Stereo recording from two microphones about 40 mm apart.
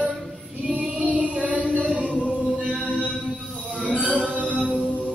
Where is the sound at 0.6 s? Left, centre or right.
Right.